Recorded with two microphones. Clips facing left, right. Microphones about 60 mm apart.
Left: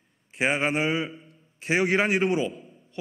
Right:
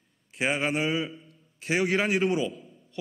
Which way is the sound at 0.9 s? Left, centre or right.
Left.